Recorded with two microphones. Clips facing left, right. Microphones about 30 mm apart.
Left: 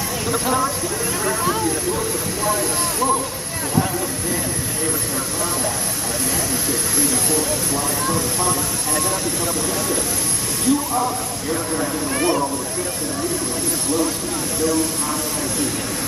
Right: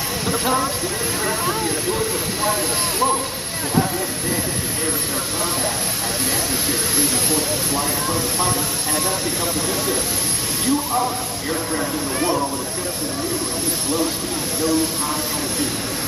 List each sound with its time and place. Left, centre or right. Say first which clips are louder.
0.3 s speech: even; centre
7.0 s speech: left 2 dB; right
10.6 s speech: left 1 dB; centre
11.8 s speech: left 1 dB; centre
13.8 s speech: left 1 dB; centre